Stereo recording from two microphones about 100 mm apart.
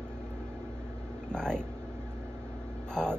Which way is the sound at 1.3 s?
5° left (ahead or behind).